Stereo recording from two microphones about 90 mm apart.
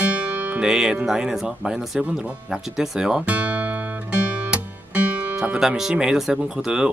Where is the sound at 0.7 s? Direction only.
5° right (ahead or behind).